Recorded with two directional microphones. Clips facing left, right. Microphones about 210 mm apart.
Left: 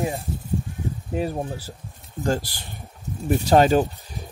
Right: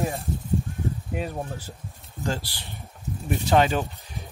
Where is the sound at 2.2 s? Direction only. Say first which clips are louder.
Left 5 dB; 45° left (ahead or behind).